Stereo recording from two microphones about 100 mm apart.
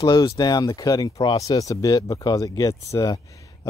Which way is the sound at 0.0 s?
40° left (ahead or behind).